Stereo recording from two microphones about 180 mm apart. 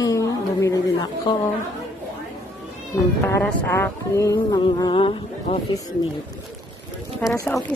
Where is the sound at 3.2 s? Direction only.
10° left (ahead or behind); by 5.6 s 30° left (ahead or behind).